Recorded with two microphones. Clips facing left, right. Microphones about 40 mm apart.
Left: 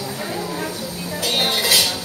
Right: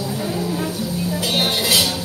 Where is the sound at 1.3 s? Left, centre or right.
Centre.